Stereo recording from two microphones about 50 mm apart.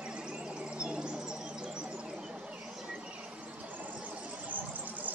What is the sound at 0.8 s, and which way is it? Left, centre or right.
Bird, centre.